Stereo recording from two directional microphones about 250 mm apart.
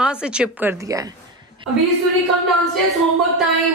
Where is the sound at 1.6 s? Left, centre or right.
Centre.